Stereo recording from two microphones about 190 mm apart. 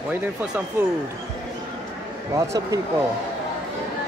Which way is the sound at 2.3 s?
15° right (ahead or behind).